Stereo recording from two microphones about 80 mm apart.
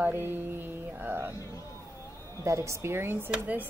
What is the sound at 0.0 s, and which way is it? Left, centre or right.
Mantra, right.